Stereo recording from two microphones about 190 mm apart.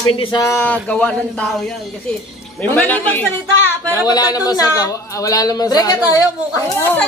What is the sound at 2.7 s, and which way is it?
Speech, 10° left (ahead or behind).